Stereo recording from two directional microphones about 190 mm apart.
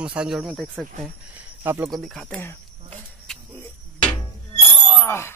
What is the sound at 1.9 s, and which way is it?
Speech, centre (ahead or behind).